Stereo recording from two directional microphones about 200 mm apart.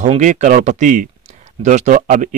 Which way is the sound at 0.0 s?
35° right (ahead or behind).